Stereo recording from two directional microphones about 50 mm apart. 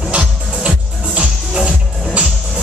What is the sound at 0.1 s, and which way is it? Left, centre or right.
Music, right.